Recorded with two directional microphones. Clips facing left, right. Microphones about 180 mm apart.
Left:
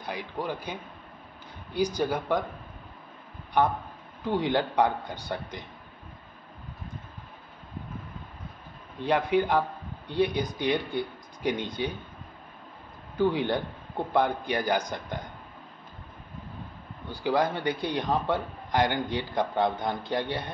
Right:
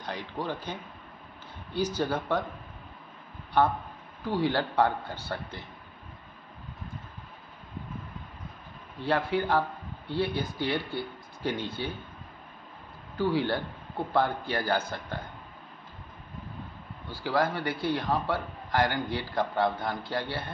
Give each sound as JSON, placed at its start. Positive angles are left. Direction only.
{"t": 0.0, "sound": "speech", "side_deg": 10}
{"t": 3.6, "sound": "speech", "side_deg": 15}
{"t": 9.0, "sound": "speech", "side_deg": 15}
{"t": 13.2, "sound": "speech", "side_deg": 20}
{"t": 17.1, "sound": "a man's voice", "side_deg": 20}